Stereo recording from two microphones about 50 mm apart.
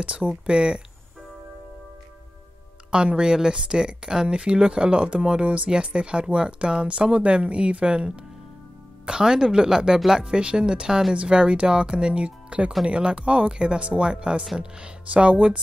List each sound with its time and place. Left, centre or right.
0.0 s speech: right
2.9 s speech: centre